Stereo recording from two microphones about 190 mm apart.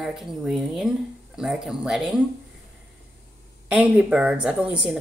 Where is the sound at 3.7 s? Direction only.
5° right (ahead or behind).